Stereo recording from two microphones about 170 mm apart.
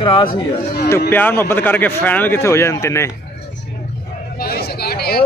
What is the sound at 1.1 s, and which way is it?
Speech, 10° left (ahead or behind).